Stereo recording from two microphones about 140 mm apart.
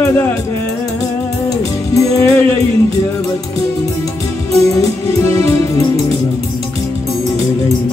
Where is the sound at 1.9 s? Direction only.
20° left (ahead or behind).